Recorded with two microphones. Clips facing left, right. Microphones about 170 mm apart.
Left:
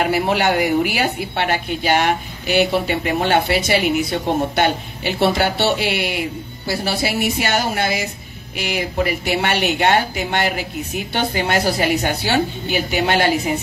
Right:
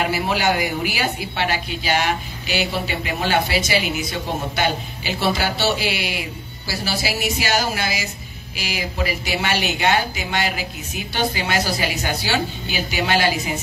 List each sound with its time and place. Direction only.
0.1 s speech: 60° left (ahead or behind)